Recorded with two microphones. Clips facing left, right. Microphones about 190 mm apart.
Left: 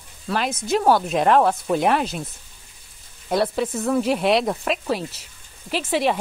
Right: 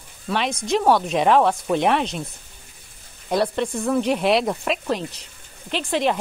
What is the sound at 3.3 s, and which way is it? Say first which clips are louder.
Speech: even; centre (ahead or behind).